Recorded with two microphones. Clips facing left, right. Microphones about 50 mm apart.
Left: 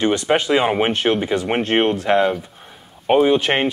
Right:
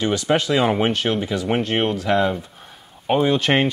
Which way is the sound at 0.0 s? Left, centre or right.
Left.